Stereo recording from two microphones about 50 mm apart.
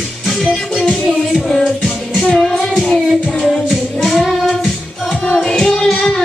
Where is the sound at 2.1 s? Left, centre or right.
Centre.